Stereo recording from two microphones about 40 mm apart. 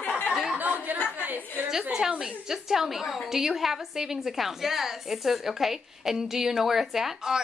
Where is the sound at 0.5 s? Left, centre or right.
Right.